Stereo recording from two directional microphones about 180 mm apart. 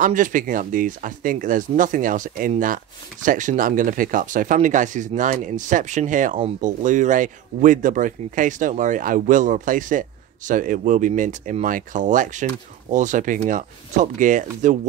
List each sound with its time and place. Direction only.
0.0 s speech: 45° right (ahead or behind)